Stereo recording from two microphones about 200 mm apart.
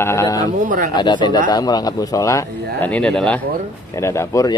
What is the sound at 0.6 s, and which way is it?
Speech, 40° right (ahead or behind).